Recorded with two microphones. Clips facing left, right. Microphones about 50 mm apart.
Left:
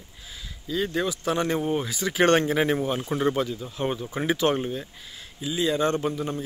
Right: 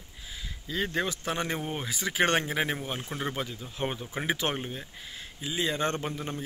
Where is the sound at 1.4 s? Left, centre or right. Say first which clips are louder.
Left 7 dB; centre.